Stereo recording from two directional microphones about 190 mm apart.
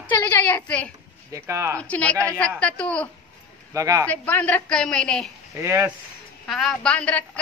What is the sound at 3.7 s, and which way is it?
Speech, 15° right (ahead or behind).